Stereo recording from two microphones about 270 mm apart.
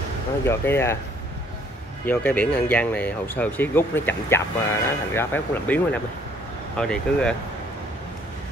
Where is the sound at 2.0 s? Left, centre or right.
Centre.